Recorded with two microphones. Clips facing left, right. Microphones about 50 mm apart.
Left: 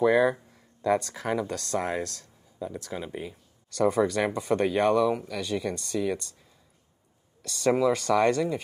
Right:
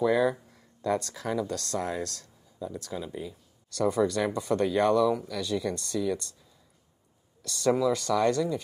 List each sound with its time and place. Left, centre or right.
0.0 s speech: left
0.4 s a sound: centre
1.1 s speech: left
1.5 s speech: left
1.8 s speech: left
2.0 s speech: centre
2.9 s speech: left
7.6 s speech: left